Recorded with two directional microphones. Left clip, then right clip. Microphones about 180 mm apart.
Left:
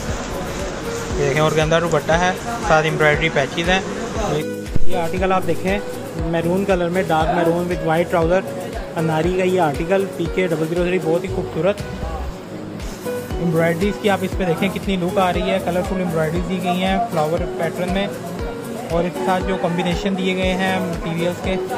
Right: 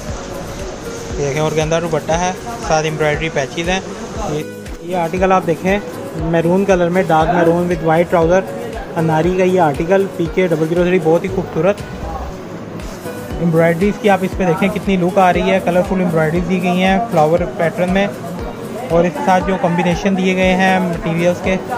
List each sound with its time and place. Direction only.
1.3 s speech: 20° right (ahead or behind)
4.9 s speech: centre (ahead or behind)
13.6 s speech: centre (ahead or behind)